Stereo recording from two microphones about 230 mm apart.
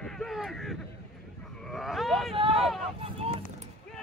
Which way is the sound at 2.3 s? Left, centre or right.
Right.